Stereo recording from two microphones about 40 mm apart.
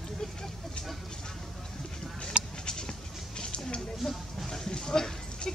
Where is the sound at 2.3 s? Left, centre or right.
Right.